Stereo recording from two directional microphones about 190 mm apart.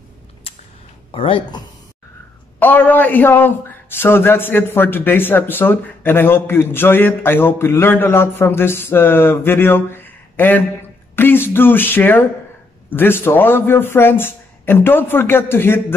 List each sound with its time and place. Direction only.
1.1 s speech: 30° left (ahead or behind)
2.6 s speech: 10° left (ahead or behind)